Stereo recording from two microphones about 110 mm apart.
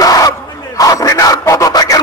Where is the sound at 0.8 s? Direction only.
30° left (ahead or behind).